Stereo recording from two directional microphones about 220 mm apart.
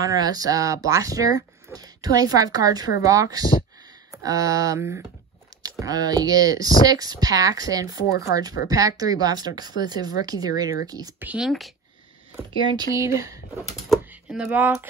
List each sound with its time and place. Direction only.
0.2 s speech: 15° right (ahead or behind)
8.3 s speech: 50° left (ahead or behind)
8.6 s speech: 15° right (ahead or behind)
12.7 s speech: 15° right (ahead or behind)